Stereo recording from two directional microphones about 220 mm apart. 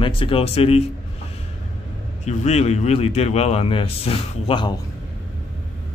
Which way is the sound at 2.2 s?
30° left (ahead or behind).